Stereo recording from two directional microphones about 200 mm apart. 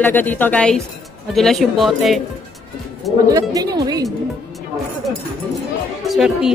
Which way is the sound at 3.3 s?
20° right (ahead or behind).